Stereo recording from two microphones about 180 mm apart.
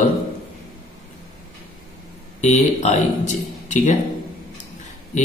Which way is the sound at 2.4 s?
40° left (ahead or behind).